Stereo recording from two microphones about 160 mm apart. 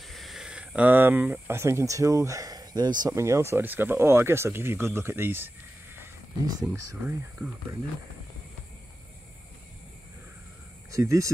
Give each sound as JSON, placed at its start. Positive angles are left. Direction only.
{"t": 0.0, "sound": "speech", "side_deg": 0}
{"t": 10.9, "sound": "speech", "side_deg": -20}